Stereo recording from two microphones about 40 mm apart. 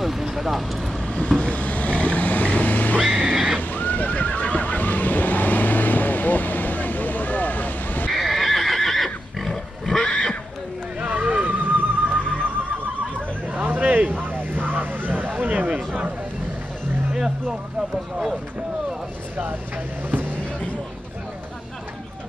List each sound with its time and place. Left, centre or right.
0.0 s speech: centre
1.0 s vehicle: left
1.4 s boat: left
3.0 s music: centre
3.7 s horse: left
8.1 s horse: centre
10.0 s neigh: left
11.0 s neigh: right
13.5 s vehicle: right
15.7 s a sound: right
17.1 s a sound: centre
20.1 s a sound: right